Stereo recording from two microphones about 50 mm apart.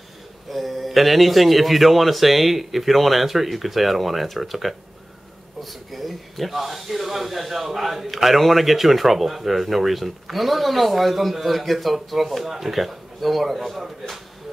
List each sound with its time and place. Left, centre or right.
0.5 s speech: centre